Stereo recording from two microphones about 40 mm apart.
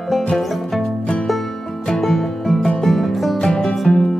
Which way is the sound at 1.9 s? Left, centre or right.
Centre.